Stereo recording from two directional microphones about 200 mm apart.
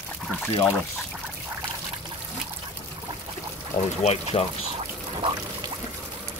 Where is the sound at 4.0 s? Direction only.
30° left (ahead or behind).